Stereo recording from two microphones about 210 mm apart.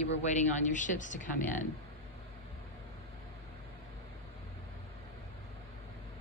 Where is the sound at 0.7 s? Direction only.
35° left (ahead or behind).